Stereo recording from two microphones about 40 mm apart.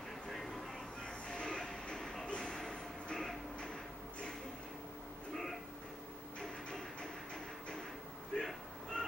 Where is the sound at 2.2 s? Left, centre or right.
Left.